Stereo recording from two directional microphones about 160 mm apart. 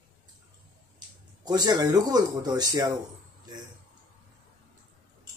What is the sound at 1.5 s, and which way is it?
Speech, 25° right (ahead or behind).